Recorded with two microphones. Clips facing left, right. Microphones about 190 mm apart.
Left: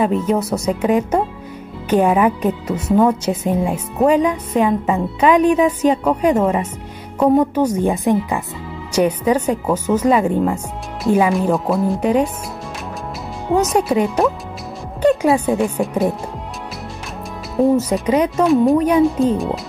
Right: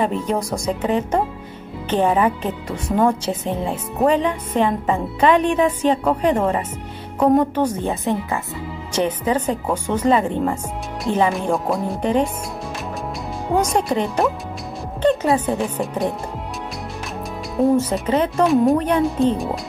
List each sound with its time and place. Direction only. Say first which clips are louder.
0.0 s a woman's voice: left 4 dB; 5° left (ahead or behind)
13.6 s speech: left 3 dB; 5° left (ahead or behind)
17.6 s a woman's voice: left 2 dB; 5° left (ahead or behind)